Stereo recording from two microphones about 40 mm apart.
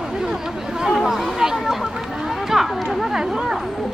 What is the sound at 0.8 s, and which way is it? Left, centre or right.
Chatter, centre.